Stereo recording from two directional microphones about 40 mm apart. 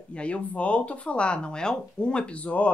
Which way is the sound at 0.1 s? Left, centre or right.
Left.